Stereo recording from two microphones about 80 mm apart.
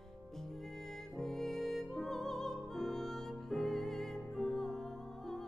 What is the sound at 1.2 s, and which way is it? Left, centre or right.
Music, centre.